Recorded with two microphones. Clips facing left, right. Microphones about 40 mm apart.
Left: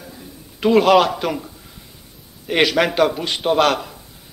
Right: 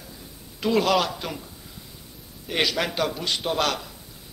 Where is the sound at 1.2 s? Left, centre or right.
Left.